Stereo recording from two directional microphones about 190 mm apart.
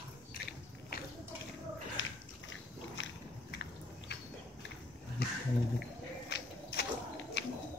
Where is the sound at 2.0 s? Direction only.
80° left.